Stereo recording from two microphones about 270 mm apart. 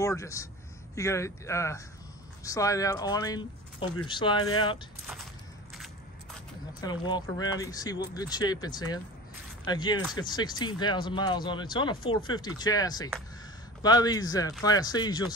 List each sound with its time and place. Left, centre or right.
0.0 s speech: centre
3.8 s speech: left
4.1 s speech: centre
6.8 s speech: centre